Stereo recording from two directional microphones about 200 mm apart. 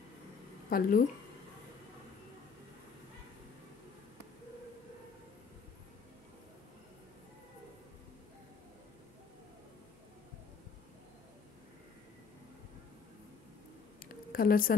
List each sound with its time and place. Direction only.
0.7 s speech: 45° left (ahead or behind)
14.3 s a woman's voice: 45° left (ahead or behind)